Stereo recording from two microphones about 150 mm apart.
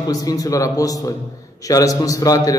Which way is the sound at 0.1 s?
25° left (ahead or behind).